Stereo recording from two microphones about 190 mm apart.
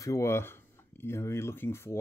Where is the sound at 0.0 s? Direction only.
15° left (ahead or behind).